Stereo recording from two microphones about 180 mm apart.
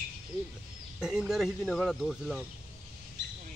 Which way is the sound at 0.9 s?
Centre (ahead or behind).